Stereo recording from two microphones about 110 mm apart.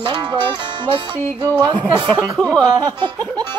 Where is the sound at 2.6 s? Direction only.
40° right (ahead or behind).